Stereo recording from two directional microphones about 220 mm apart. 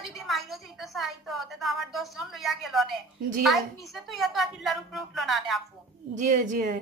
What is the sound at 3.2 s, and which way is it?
Speech, 40° right (ahead or behind).